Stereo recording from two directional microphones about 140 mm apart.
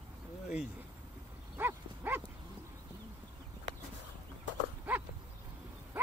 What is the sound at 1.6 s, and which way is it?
Livestock, 15° right (ahead or behind).